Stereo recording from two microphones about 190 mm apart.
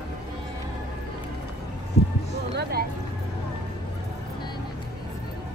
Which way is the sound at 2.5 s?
55° right (ahead or behind).